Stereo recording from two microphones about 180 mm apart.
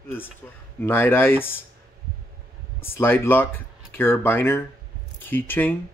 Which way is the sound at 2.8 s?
10° left (ahead or behind).